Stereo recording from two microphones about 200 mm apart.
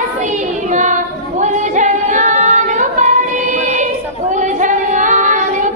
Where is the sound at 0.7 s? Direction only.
35° right (ahead or behind).